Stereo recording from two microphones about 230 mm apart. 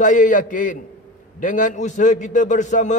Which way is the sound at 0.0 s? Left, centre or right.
Left.